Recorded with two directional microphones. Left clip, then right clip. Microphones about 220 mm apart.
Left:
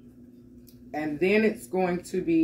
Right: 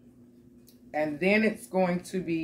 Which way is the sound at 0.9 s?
15° right (ahead or behind).